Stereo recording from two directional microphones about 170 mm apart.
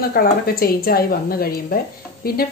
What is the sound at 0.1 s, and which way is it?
A woman's voice, 60° left (ahead or behind).